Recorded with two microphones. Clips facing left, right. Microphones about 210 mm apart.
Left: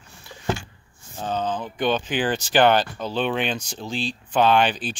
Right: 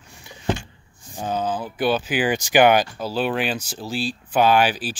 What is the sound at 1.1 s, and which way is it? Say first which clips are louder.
Speech: right 1 dB; 10° right (ahead or behind).